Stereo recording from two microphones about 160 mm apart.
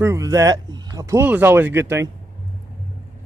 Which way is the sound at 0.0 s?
20° right (ahead or behind).